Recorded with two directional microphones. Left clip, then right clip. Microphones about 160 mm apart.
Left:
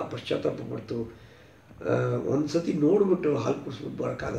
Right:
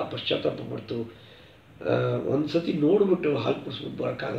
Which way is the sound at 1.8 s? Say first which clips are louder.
Right 1 dB; 10° right (ahead or behind).